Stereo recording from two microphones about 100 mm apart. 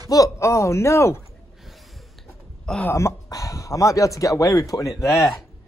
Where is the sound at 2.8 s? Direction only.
25° left (ahead or behind).